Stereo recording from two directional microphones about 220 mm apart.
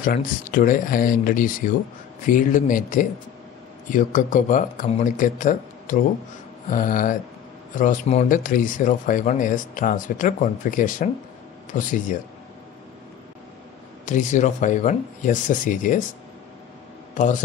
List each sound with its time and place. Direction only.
0.0 s speech: 40° left (ahead or behind)
14.0 s speech: 35° left (ahead or behind)
17.1 s speech: 35° left (ahead or behind)